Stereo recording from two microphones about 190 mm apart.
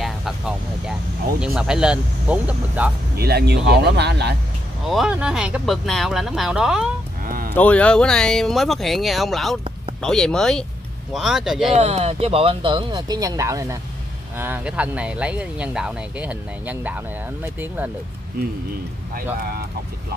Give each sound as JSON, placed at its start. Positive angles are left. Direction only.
{"t": 1.4, "sound": "speech", "side_deg": -5}
{"t": 3.2, "sound": "speech", "side_deg": -60}
{"t": 4.8, "sound": "speech", "side_deg": 0}
{"t": 7.2, "sound": "a sound", "side_deg": -50}
{"t": 7.5, "sound": "speech", "side_deg": 10}
{"t": 11.7, "sound": "speech", "side_deg": -35}